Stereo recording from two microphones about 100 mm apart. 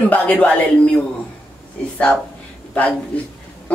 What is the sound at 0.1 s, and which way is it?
Speech, 15° left (ahead or behind).